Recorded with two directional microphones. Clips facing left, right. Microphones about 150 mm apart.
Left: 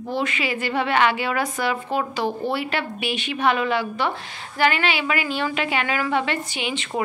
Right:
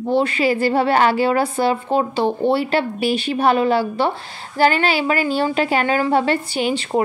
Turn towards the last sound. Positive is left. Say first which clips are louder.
# right 7 dB
turn(degrees=-40)  # may be behind; listen again after turning